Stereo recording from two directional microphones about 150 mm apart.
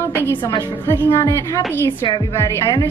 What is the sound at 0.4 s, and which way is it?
Speech, 30° left (ahead or behind).